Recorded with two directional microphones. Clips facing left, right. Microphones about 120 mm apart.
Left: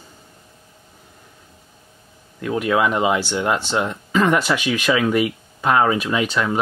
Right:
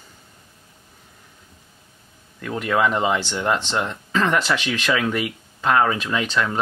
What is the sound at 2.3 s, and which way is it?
Speech, 10° left (ahead or behind).